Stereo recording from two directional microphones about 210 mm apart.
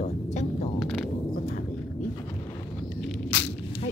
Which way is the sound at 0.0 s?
35° left (ahead or behind).